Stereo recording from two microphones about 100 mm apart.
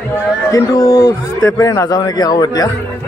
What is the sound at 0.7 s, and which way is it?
A man's voice, 35° left (ahead or behind).